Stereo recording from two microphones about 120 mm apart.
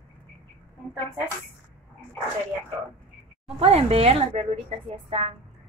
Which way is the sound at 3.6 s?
55° right (ahead or behind).